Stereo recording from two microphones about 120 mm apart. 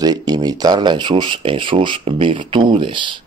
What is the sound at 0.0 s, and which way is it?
Speech, 35° right (ahead or behind).